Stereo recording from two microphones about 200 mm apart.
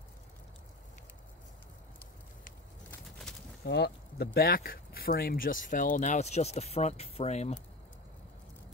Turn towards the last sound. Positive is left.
turn(degrees=35)  # may be behind; listen again after turning